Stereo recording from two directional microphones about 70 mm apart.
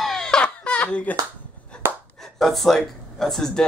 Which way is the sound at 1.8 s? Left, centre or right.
Right.